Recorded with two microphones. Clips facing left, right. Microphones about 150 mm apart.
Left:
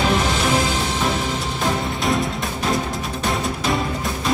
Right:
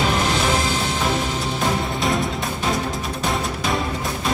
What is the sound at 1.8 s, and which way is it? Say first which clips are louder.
Music: even; centre (ahead or behind).